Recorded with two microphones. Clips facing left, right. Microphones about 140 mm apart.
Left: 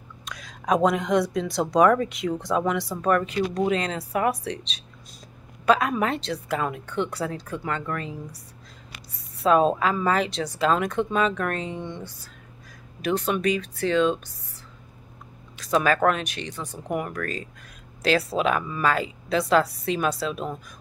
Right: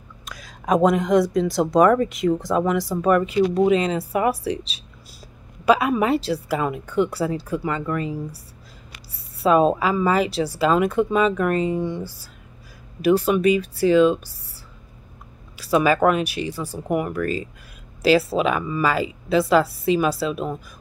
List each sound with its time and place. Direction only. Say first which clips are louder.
0.2 s speech: right 1 dB; centre (ahead or behind)
15.5 s speech: right 4 dB; 5° right (ahead or behind)